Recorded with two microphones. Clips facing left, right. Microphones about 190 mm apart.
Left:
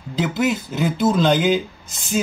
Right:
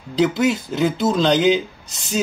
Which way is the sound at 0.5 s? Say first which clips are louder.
Right 2 dB; 5° left (ahead or behind).